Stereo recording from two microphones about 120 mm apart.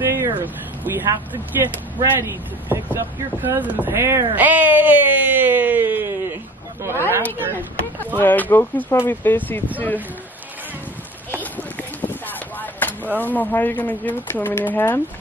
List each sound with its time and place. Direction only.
0.0 s vehicle: 20° right (ahead or behind)
0.4 s speech: 20° right (ahead or behind)
8.2 s speech: 15° left (ahead or behind)
11.5 s a sound: 15° left (ahead or behind)
13.2 s speech: 15° left (ahead or behind)